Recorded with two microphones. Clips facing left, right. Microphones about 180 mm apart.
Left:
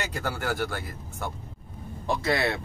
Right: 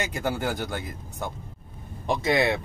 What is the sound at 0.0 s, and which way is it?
Speech, 20° right (ahead or behind).